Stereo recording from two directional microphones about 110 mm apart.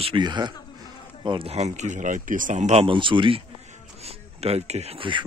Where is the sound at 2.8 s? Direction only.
50° right (ahead or behind).